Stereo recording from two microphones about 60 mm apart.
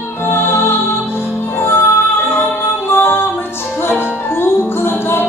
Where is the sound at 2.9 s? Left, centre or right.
Left.